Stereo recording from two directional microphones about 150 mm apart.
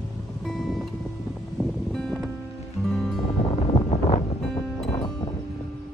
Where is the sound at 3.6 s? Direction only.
40° left (ahead or behind).